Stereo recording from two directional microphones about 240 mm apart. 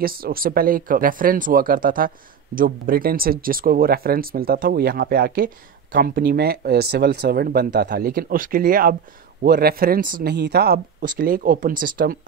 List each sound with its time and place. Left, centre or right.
0.0 s speech: right